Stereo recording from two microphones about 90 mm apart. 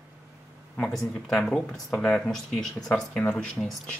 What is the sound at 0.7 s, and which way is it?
Speech, 10° left (ahead or behind).